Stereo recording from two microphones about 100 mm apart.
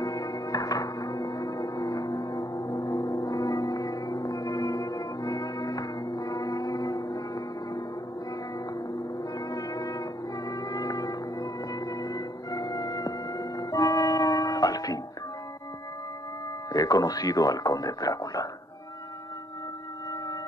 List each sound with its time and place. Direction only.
0.0 s music: 40° left (ahead or behind)
9.5 s music: 35° left (ahead or behind)
16.7 s speech: 40° left (ahead or behind)